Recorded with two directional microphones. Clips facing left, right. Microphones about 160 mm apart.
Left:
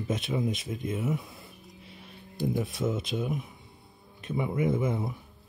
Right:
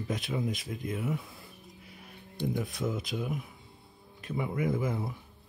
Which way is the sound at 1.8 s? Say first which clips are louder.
Left 2 dB; 25° left (ahead or behind).